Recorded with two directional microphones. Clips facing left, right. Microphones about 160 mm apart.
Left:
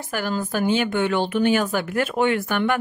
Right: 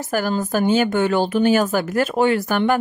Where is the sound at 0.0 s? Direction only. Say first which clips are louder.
Right 4 dB; 40° right (ahead or behind).